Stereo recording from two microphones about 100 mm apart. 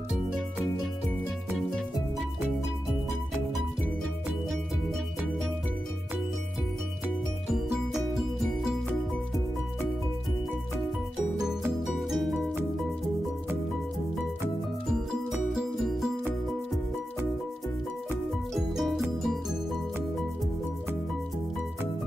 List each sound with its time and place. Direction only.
11.9 s music: centre (ahead or behind)
18.5 s music: centre (ahead or behind)